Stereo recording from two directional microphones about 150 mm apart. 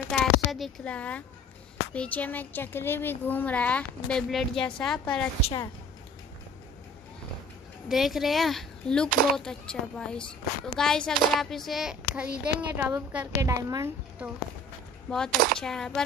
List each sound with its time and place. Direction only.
0.1 s a sound: centre (ahead or behind)
2.0 s a woman's voice: 10° left (ahead or behind)
7.9 s a woman's voice: centre (ahead or behind)
13.5 s a woman's voice: 25° right (ahead or behind)
15.0 s speech: 5° left (ahead or behind)